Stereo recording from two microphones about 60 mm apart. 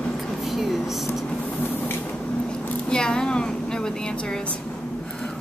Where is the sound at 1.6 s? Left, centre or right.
Left.